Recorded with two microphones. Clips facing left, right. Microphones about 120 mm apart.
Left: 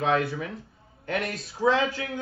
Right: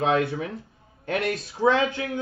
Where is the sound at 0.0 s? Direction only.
25° right (ahead or behind).